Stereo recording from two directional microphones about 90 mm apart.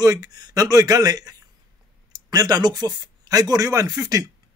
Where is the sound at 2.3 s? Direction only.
45° right (ahead or behind).